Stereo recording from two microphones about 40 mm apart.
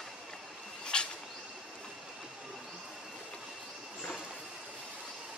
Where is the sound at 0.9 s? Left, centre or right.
Left.